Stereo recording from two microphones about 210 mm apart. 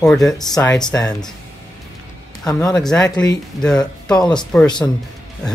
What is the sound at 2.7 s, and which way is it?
Speech, 5° left (ahead or behind).